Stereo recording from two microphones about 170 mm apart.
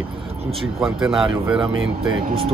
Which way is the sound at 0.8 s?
5° right (ahead or behind).